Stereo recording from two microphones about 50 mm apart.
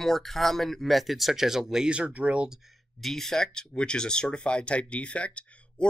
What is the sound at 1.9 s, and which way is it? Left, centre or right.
Speech, right.